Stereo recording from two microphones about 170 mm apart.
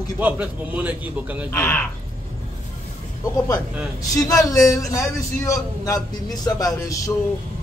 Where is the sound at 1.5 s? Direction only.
10° left (ahead or behind).